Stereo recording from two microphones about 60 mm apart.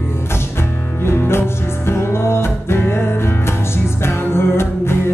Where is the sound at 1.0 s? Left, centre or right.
Left.